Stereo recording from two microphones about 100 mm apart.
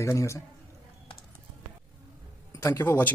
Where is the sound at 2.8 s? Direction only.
25° left (ahead or behind).